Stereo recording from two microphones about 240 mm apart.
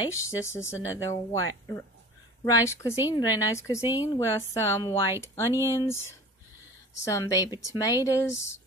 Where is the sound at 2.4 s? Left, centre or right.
Centre.